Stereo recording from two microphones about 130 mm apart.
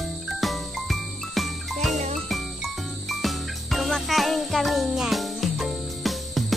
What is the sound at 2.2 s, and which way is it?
Jingle bell, centre (ahead or behind).